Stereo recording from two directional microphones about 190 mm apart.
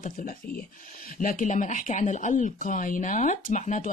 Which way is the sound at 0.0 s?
50° left (ahead or behind).